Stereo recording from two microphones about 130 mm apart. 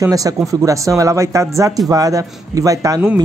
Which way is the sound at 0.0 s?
25° right (ahead or behind).